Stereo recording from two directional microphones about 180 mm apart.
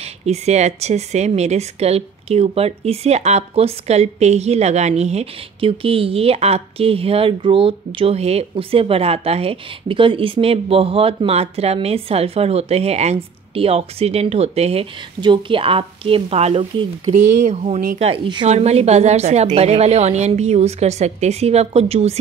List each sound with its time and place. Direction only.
0.0 s speech: 35° right (ahead or behind)